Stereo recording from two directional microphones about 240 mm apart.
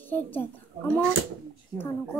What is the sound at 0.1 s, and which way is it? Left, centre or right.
Speech, centre.